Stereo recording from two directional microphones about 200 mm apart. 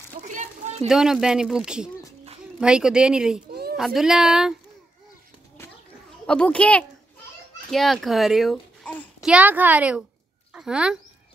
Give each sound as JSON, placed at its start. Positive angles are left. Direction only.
{"t": 0.2, "sound": "a sound", "side_deg": -40}
{"t": 0.8, "sound": "speech", "side_deg": 0}
{"t": 6.2, "sound": "a child's voice", "side_deg": 5}
{"t": 9.3, "sound": "a woman's voice", "side_deg": -10}